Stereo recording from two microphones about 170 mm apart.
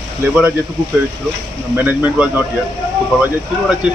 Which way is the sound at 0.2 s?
10° right (ahead or behind).